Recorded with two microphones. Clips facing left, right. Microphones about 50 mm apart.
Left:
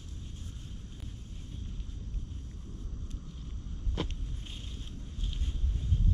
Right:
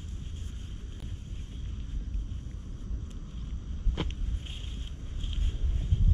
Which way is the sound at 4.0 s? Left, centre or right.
Centre.